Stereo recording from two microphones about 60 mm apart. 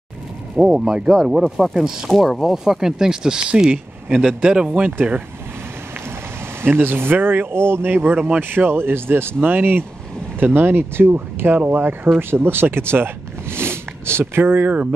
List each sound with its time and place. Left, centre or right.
0.6 s speech: centre
2.0 s speech: centre
6.6 s speech: right